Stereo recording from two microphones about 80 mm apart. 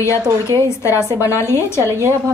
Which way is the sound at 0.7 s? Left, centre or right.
Left.